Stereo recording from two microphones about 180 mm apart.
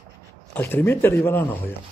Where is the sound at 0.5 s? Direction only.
10° left (ahead or behind).